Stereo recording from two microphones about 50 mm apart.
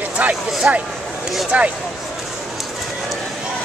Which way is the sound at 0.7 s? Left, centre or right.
Right.